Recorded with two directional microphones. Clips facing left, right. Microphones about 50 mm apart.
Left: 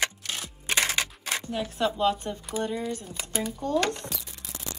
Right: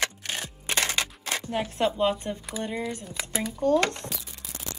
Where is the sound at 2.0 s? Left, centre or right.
Right.